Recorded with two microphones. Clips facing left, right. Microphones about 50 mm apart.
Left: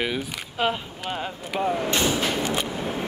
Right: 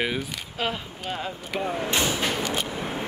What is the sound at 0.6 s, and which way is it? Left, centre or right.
Speech, left.